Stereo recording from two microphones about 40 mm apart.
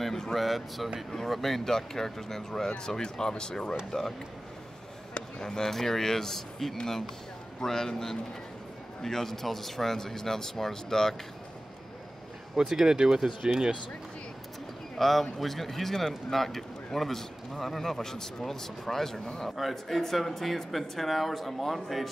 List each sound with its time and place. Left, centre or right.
0.0 s a sound: centre
1.1 s speech: centre
5.1 s basketball bounce: centre
5.7 s speech: centre
12.5 s speech: centre
15.0 s speech: centre